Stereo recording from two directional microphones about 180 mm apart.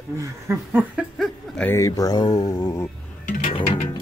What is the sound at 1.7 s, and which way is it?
Speech, 15° left (ahead or behind).